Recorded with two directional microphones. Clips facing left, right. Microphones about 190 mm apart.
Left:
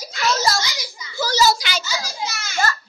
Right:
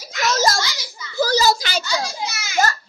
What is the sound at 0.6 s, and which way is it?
Children playing, 15° left (ahead or behind).